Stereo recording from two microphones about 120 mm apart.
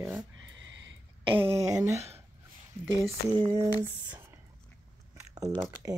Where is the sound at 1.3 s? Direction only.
25° right (ahead or behind).